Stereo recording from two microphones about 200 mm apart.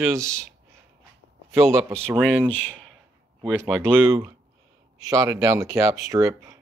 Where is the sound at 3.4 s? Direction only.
5° right (ahead or behind).